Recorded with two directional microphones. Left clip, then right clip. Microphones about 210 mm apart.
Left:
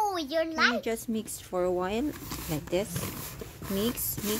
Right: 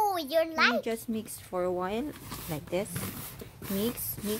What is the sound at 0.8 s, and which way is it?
Speech, 5° left (ahead or behind).